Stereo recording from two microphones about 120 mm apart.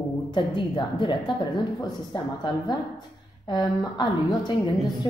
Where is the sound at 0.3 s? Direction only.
45° left (ahead or behind).